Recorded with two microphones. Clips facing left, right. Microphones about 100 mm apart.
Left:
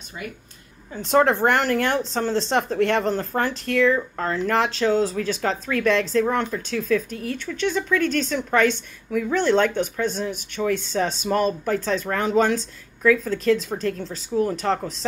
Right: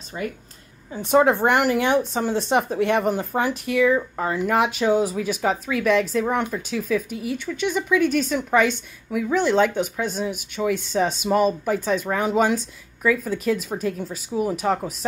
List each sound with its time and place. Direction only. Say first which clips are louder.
0.1 s speech: right 6 dB; 35° right (ahead or behind)
1.1 s speech: right 1 dB; 10° right (ahead or behind)